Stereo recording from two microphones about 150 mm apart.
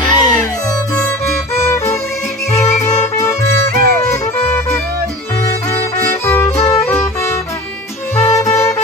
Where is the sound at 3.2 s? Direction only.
20° left (ahead or behind).